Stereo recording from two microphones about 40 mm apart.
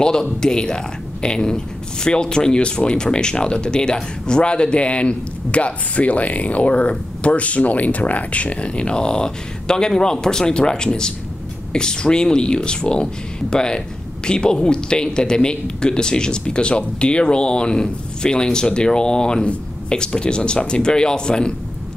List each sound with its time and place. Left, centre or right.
0.0 s speech: centre